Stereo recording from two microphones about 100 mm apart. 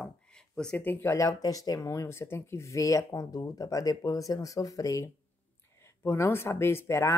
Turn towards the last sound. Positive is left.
turn(degrees=25)  # may be behind; listen again after turning